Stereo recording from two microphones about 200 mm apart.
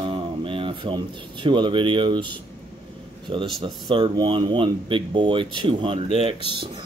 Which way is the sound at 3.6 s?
25° right (ahead or behind).